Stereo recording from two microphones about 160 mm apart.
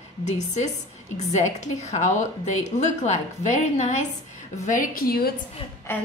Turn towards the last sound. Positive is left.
turn(degrees=15)  # may be behind; listen again after turning